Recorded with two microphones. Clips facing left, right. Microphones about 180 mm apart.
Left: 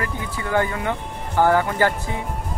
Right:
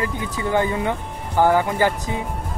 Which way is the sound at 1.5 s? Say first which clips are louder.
Even; 15° right (ahead or behind).